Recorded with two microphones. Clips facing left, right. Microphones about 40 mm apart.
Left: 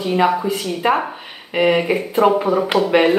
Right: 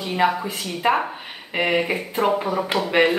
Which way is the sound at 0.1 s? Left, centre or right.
Centre.